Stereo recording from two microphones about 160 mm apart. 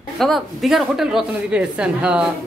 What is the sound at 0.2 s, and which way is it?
A woman's voice, centre (ahead or behind).